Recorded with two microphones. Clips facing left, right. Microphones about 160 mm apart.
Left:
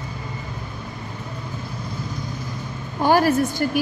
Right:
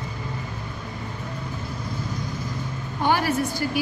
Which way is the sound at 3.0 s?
40° left (ahead or behind).